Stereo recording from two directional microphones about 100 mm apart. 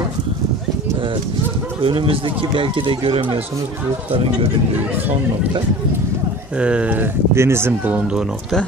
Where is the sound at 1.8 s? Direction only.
65° right (ahead or behind).